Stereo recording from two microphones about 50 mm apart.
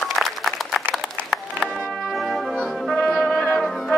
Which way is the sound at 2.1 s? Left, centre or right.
Centre.